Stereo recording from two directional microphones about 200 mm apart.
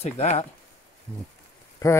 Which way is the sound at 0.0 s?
30° left (ahead or behind).